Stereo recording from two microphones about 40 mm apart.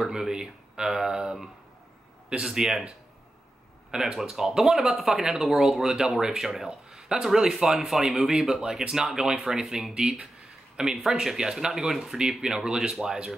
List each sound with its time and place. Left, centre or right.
0.1 s speech: centre
2.4 s speech: centre
3.9 s speech: centre